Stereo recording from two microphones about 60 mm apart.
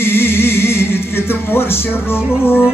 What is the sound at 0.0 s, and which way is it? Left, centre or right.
Music, left.